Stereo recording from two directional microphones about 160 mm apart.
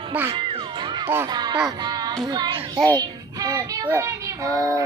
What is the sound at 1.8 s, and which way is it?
Speech, 25° right (ahead or behind).